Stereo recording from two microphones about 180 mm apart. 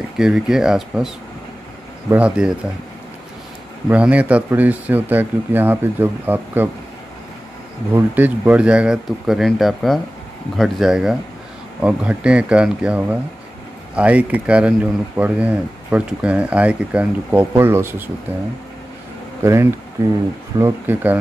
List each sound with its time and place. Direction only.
0.2 s speech: 5° right (ahead or behind)
3.9 s speech: 10° right (ahead or behind)
7.9 s speech: 10° right (ahead or behind)
19.4 s speech: 15° right (ahead or behind)